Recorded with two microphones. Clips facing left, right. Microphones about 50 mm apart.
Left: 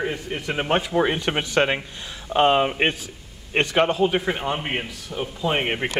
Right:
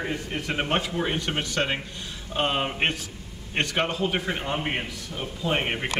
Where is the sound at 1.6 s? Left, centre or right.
Left.